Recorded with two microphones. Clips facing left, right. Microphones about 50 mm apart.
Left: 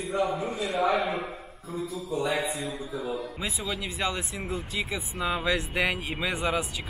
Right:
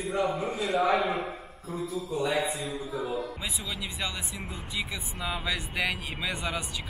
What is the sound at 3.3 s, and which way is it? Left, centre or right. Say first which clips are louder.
Speech: left 3 dB; centre.